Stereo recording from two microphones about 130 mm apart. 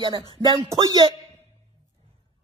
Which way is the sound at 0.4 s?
30° right (ahead or behind).